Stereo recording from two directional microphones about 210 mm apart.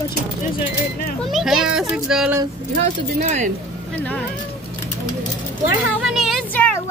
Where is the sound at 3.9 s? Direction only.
5° left (ahead or behind).